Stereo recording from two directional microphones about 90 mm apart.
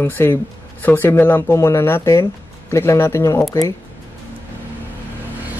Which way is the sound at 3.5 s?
45° left (ahead or behind).